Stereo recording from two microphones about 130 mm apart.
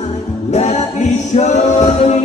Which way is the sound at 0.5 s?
60° left (ahead or behind).